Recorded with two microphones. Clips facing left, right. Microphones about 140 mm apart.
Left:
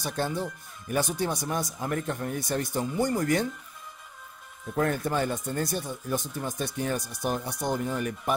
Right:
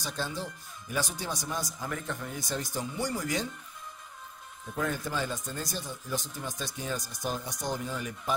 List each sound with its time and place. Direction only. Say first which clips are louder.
0.0 s speech: left 5 dB; 55° left (ahead or behind)
4.7 s speech: left 6 dB; 55° left (ahead or behind)